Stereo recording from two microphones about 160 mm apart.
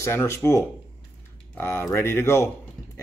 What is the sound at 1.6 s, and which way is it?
Speech, 15° left (ahead or behind).